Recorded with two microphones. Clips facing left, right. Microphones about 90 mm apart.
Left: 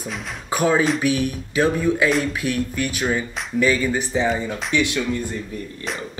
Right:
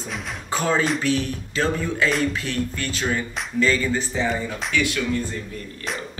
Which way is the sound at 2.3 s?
15° left (ahead or behind).